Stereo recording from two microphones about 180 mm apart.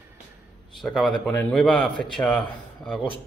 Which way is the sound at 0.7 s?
Centre (ahead or behind).